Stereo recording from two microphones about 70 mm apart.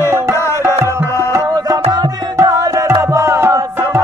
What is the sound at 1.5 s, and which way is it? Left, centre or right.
Music, right.